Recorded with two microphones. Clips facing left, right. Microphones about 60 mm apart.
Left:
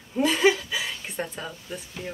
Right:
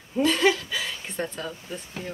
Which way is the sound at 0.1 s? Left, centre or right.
Centre.